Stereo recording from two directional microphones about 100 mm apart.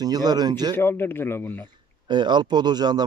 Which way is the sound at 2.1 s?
50° right (ahead or behind).